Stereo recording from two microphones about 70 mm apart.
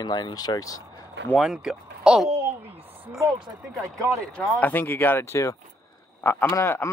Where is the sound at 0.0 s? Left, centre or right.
Left.